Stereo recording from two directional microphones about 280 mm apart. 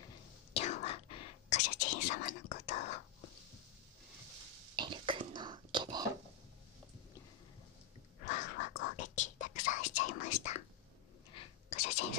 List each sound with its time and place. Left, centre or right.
0.5 s whispering: left
4.7 s whispering: centre
8.3 s crow: left
8.8 s whispering: left